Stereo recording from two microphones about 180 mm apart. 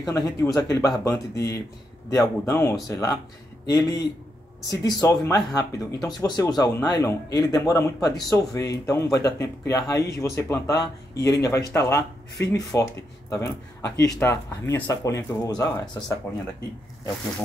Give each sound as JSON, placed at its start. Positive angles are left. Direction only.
{"t": 0.1, "sound": "speech", "side_deg": 20}